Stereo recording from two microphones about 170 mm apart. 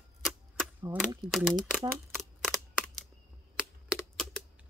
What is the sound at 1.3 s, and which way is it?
Speech, centre (ahead or behind).